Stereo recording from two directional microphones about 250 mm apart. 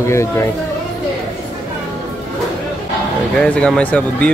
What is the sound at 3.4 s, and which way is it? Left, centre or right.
Speech, centre.